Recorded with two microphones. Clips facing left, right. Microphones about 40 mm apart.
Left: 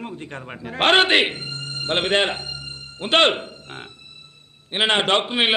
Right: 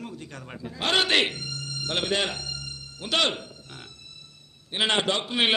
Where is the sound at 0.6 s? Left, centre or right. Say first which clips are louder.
Left 9 dB; left.